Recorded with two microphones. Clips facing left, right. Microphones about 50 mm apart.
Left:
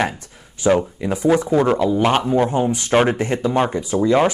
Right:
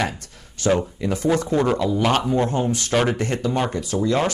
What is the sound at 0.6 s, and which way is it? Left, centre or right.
Speech, centre.